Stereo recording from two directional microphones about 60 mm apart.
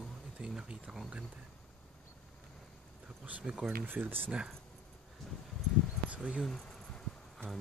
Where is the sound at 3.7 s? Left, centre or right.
Right.